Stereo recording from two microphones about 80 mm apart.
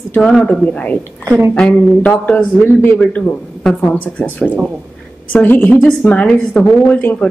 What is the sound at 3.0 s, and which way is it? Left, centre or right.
Speech, centre.